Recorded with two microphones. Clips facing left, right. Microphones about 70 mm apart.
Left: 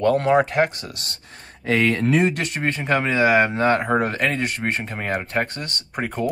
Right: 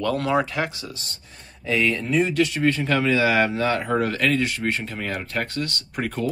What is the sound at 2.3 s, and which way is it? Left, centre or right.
A man's voice, left.